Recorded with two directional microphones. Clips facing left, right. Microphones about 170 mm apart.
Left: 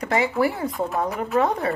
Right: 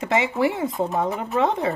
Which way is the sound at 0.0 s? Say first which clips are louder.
Even; 25° right (ahead or behind).